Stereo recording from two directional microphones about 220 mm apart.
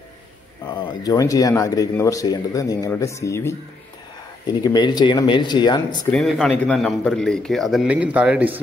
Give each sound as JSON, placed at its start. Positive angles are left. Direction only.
{"t": 0.7, "sound": "speech", "side_deg": 20}
{"t": 4.6, "sound": "speech", "side_deg": 20}
{"t": 6.1, "sound": "a man's voice", "side_deg": 0}